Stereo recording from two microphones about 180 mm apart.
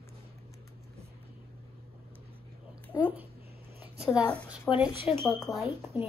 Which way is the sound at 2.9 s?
10° right (ahead or behind).